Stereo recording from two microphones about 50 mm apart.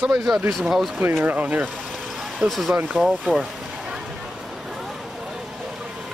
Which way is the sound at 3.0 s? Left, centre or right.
Right.